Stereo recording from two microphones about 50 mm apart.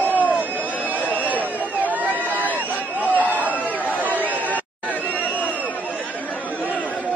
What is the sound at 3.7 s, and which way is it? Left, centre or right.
Chatter, left.